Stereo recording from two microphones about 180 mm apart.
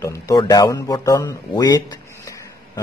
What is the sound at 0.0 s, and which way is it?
Speech, 15° left (ahead or behind).